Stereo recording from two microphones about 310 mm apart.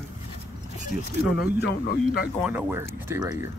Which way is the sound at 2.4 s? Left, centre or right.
Centre.